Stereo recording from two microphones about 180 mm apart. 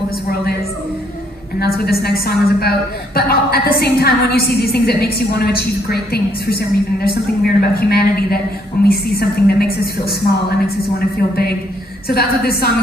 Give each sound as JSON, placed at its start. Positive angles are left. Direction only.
{"t": 1.6, "sound": "a woman's voice", "side_deg": 60}